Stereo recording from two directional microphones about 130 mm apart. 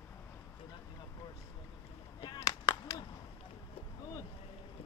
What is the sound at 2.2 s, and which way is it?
Chop, 35° left (ahead or behind).